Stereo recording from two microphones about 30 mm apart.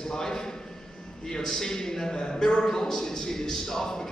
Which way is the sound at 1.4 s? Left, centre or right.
Centre.